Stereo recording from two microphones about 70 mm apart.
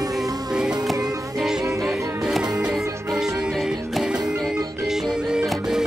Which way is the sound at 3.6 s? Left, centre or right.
Centre.